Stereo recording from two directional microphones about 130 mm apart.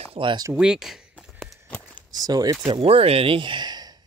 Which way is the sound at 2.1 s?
30° right (ahead or behind).